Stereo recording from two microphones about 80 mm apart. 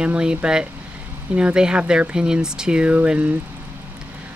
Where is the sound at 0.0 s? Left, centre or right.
Centre.